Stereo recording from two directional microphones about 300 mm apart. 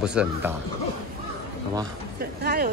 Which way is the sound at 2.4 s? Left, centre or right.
Right.